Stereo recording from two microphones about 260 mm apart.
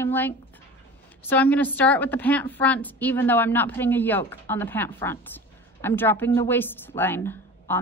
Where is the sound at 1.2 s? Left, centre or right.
Centre.